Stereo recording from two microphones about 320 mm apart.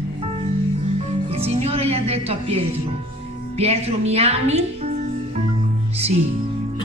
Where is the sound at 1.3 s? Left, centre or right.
Centre.